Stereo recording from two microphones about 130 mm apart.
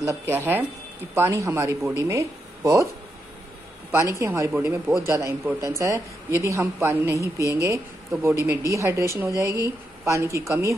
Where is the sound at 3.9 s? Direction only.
20° right (ahead or behind).